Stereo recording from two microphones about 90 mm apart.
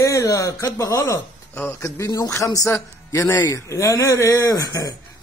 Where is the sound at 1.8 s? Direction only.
40° left (ahead or behind).